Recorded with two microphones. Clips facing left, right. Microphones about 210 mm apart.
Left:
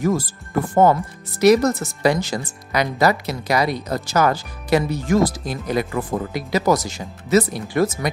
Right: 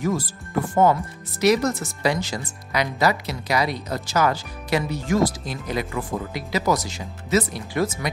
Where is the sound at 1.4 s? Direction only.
45° left (ahead or behind).